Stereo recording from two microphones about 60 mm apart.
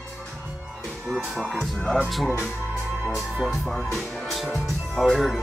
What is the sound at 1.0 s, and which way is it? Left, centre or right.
Speech, centre.